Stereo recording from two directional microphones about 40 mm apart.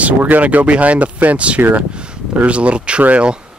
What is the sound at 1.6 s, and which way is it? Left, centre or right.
Speech, right.